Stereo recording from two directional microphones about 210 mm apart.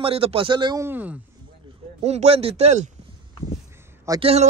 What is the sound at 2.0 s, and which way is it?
Speech, 30° right (ahead or behind).